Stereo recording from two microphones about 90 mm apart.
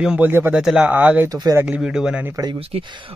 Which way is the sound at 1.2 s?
45° right (ahead or behind).